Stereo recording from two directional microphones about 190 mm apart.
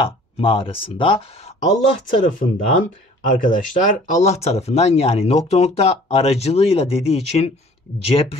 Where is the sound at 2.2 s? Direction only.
45° left (ahead or behind).